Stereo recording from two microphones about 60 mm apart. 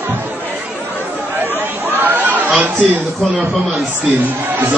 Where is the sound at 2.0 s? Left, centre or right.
Right.